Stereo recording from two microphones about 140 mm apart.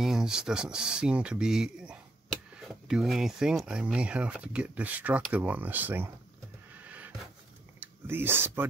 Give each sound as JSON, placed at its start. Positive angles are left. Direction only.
{"t": 0.0, "sound": "speech", "side_deg": -5}
{"t": 6.8, "sound": "a sound", "side_deg": -10}
{"t": 7.8, "sound": "speech", "side_deg": -15}